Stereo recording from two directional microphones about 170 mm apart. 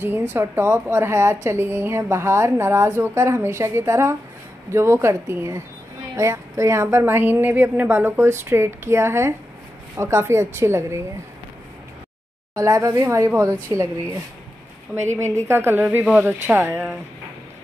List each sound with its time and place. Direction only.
0.0 s a woman's voice: 10° right (ahead or behind)
12.5 s a woman's voice: 20° right (ahead or behind)
15.4 s a woman's voice: 15° right (ahead or behind)